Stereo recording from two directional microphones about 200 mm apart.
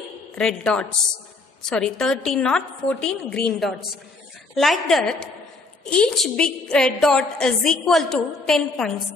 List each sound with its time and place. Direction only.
0.4 s a woman's voice: 5° left (ahead or behind)